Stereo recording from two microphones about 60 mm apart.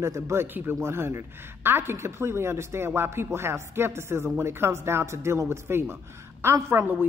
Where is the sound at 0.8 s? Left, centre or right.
Right.